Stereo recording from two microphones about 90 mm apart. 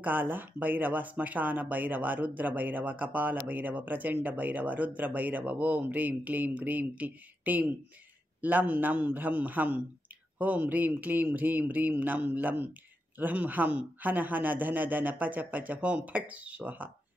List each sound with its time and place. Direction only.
0.0 s speech: 20° right (ahead or behind)